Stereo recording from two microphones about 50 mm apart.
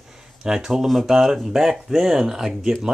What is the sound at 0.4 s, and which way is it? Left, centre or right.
Speech, centre.